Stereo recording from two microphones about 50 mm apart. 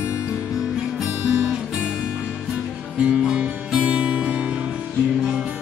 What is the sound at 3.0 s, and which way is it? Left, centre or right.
Music, centre.